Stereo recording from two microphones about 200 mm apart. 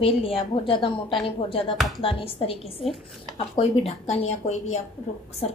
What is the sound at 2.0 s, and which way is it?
A woman's voice, 25° left (ahead or behind).